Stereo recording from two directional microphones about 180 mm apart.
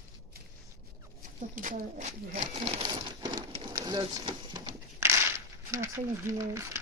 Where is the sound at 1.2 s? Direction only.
50° right (ahead or behind).